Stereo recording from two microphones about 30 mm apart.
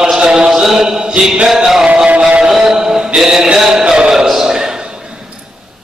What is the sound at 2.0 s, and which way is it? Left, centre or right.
Music, right.